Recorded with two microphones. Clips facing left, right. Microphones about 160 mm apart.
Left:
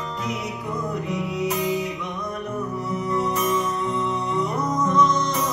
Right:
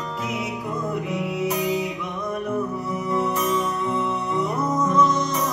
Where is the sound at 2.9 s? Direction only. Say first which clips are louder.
Even; 5° right (ahead or behind).